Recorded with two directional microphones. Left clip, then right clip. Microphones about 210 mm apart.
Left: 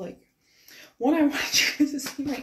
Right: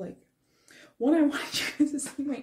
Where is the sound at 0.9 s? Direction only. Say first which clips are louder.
Left 2 dB; 15° right (ahead or behind).